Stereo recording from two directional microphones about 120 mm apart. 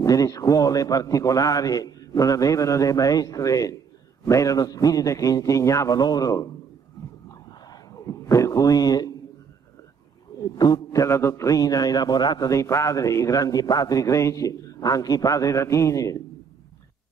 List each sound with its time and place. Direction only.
0.0 s a man's voice: 30° left (ahead or behind)
7.6 s a sound: 30° left (ahead or behind)
10.4 s a man's voice: 30° left (ahead or behind)